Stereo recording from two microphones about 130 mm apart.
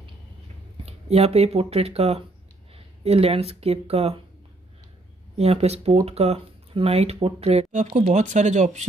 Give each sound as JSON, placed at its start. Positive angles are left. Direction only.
{"t": 0.8, "sound": "speech", "side_deg": -50}
{"t": 5.4, "sound": "speech", "side_deg": -50}